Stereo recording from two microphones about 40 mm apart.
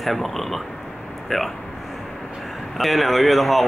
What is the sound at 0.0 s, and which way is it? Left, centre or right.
Speech, centre.